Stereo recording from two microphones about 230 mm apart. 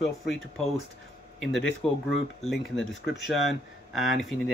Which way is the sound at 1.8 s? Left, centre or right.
Centre.